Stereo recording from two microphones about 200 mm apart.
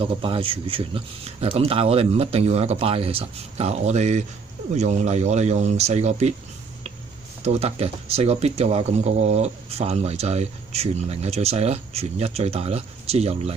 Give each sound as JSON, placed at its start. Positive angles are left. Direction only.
{"t": 0.0, "sound": "speech", "side_deg": -25}
{"t": 7.4, "sound": "speech", "side_deg": -30}